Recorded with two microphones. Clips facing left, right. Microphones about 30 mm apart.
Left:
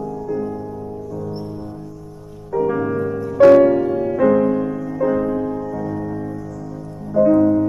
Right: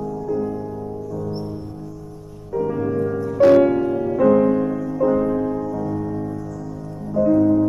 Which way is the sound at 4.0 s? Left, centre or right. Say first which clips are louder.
Left 1 dB; centre.